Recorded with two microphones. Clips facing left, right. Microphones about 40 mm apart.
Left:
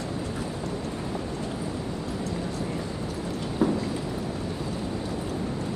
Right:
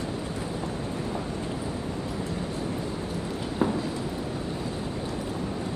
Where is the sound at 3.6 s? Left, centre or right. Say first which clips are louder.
Left 2 dB; right.